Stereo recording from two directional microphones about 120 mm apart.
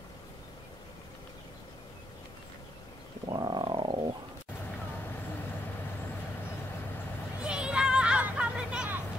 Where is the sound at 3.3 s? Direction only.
35° right (ahead or behind).